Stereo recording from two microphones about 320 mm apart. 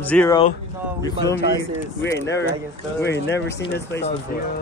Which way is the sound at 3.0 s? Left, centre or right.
Left.